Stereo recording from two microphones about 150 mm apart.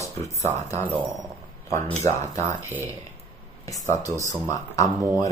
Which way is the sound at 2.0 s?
20° left (ahead or behind).